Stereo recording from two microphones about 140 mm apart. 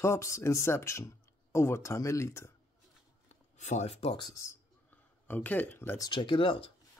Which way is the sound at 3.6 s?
55° left (ahead or behind).